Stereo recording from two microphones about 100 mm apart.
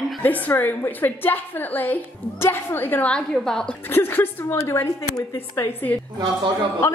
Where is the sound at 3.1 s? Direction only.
5° left (ahead or behind).